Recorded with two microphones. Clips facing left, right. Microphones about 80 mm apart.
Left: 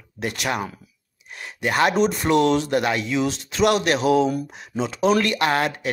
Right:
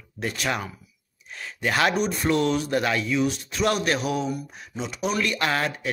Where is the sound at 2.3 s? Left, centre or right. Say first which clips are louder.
Left 4 dB; left.